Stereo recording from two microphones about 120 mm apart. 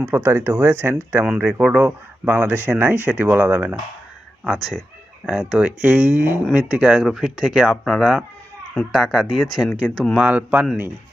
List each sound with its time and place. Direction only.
0.0 s speech: 20° right (ahead or behind)
1.2 s speech: 5° right (ahead or behind)
4.5 s speech: centre (ahead or behind)
10.1 s speech: 10° right (ahead or behind)